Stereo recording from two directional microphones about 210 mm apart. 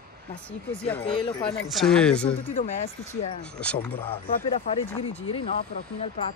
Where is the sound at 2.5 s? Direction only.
30° left (ahead or behind).